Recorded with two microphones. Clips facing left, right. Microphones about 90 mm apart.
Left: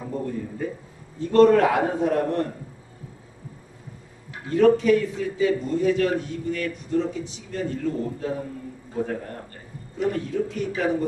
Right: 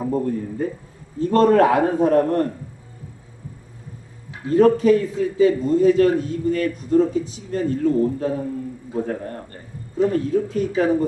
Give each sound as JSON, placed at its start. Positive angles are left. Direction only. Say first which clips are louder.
{"t": 0.0, "sound": "a man's voice", "louder": "right 7 dB", "side_deg": -40}
{"t": 4.5, "sound": "a man's voice", "louder": "right 3 dB", "side_deg": -35}
{"t": 9.9, "sound": "a man's voice", "louder": "right 6 dB", "side_deg": -35}